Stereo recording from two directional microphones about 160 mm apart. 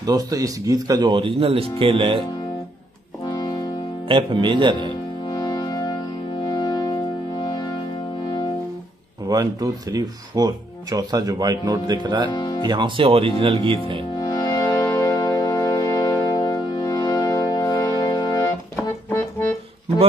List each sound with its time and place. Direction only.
0.0 s speech: 25° right (ahead or behind)
3.3 s music: 30° left (ahead or behind)
4.1 s speech: 30° right (ahead or behind)
5.3 s music: 25° left (ahead or behind)
9.3 s speech: 25° right (ahead or behind)
12.3 s speech: 30° left (ahead or behind)
12.6 s speech: 30° right (ahead or behind)
14.1 s music: 25° left (ahead or behind)